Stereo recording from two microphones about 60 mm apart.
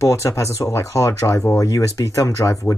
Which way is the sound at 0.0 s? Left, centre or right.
Left.